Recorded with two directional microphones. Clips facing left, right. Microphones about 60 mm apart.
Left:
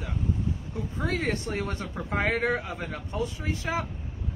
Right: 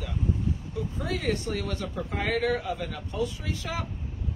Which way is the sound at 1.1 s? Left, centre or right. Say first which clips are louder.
Right 1 dB; left.